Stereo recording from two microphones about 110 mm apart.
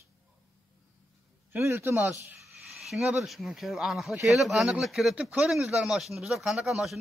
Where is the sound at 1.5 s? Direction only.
20° right (ahead or behind).